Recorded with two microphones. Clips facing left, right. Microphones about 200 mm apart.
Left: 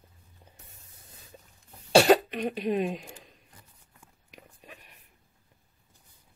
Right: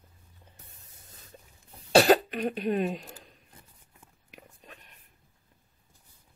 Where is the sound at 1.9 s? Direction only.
Centre (ahead or behind).